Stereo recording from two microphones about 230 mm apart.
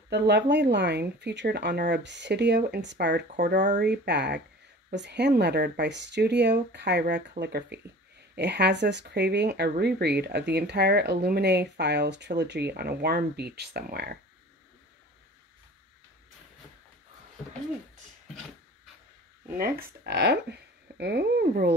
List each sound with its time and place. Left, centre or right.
0.5 s speech: right
19.5 s speech: right